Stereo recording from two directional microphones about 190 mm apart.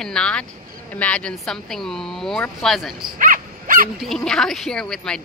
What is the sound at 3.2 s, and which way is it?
Dog, 45° right (ahead or behind).